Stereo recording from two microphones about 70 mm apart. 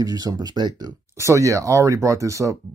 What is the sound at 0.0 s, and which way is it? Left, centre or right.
Speech, right.